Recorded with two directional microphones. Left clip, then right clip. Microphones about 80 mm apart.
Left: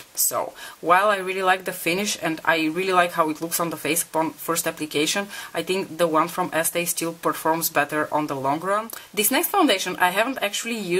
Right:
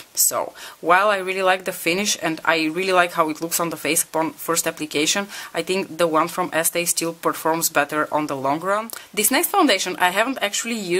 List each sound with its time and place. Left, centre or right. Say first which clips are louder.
0.3 s speech: right 2 dB; right